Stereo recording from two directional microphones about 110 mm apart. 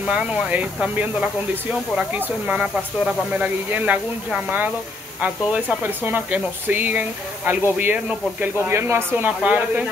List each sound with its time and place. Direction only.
0.0 s speech: 10° right (ahead or behind)